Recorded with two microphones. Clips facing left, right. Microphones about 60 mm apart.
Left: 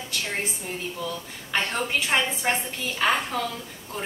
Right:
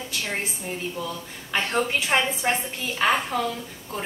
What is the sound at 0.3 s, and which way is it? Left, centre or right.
A woman's voice, centre.